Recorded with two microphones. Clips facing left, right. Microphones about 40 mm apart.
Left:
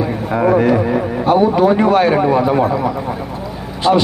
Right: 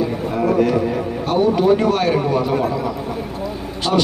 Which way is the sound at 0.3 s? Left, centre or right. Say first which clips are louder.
Left 6 dB; left.